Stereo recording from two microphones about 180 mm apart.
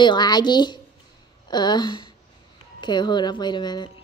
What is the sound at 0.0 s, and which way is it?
A woman's voice, 25° left (ahead or behind).